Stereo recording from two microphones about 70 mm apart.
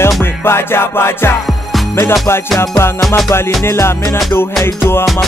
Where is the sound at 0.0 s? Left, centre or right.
Left.